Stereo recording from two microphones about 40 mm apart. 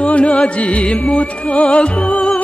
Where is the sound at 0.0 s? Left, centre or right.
Left.